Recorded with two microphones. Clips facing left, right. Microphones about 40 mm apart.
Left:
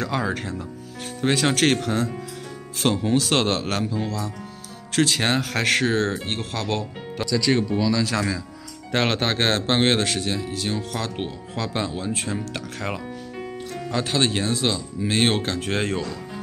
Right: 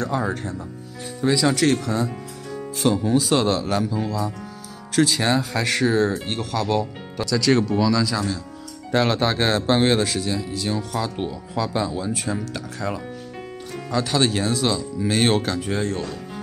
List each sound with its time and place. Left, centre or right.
0.0 s speech: left
1.2 s speech: left
2.8 s speech: left
3.8 s speech: left
4.9 s speech: left
5.9 s speech: left
7.2 s speech: centre
8.9 s speech: left
13.9 s speech: left
15.6 s speech: left